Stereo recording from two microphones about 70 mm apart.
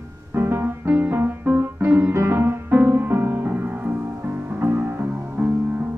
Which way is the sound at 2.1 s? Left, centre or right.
Right.